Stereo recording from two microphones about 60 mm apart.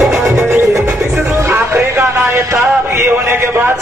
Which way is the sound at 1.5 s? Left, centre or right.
Right.